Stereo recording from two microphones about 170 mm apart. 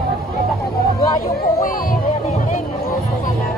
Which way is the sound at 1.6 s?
55° left (ahead or behind).